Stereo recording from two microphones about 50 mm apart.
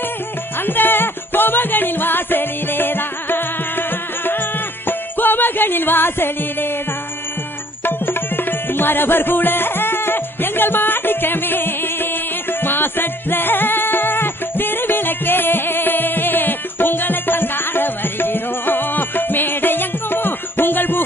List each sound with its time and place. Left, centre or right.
0.6 s music: left
7.8 s tabla: left